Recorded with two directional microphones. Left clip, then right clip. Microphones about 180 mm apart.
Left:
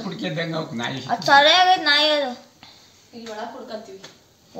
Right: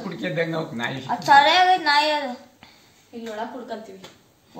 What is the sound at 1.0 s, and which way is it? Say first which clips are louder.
A woman's voice: left 1 dB; 50° left (ahead or behind).